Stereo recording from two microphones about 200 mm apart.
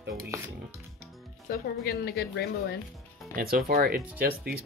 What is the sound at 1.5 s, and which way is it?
A woman's voice, 50° left (ahead or behind).